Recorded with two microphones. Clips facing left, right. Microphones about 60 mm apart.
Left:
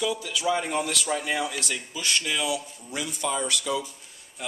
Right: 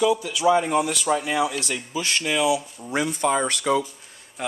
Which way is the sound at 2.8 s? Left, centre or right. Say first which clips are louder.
Right 8 dB; right.